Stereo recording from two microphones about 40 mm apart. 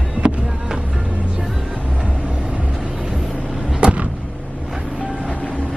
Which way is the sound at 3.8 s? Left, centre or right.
Right.